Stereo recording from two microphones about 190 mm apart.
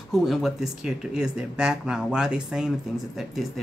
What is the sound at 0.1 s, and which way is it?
Speech, centre (ahead or behind).